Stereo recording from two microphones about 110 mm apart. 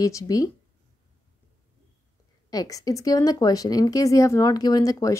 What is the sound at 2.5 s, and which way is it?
Speech, 35° left (ahead or behind).